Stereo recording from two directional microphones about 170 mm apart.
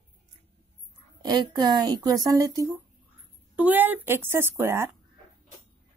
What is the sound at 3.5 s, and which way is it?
Speech, 10° right (ahead or behind).